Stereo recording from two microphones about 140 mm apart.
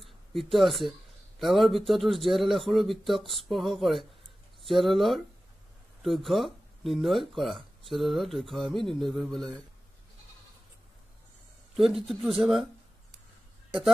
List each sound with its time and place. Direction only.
0.0 s speech: centre (ahead or behind)
11.7 s speech: centre (ahead or behind)